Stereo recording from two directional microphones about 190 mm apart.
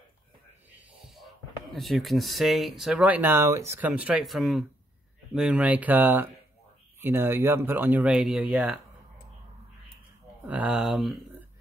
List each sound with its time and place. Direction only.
0.7 s speech: 5° right (ahead or behind)
10.4 s speech: 10° right (ahead or behind)